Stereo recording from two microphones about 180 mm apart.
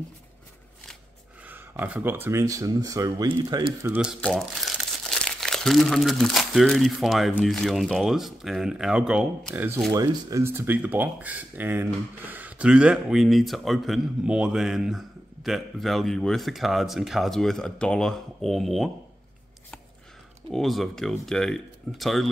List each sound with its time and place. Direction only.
1.5 s speech: 10° right (ahead or behind)
3.9 s speech: 5° right (ahead or behind)
20.5 s speech: centre (ahead or behind)